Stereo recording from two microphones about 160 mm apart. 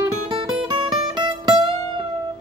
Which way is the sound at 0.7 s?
25° right (ahead or behind).